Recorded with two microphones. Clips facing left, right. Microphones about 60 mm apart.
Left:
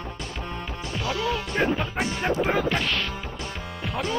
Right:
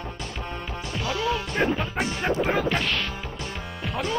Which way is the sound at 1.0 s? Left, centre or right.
Centre.